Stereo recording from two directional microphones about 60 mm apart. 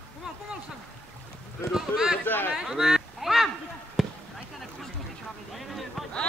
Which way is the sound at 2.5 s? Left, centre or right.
Centre.